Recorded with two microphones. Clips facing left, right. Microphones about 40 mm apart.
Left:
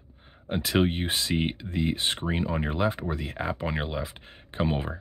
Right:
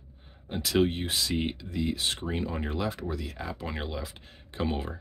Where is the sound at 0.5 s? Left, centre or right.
Left.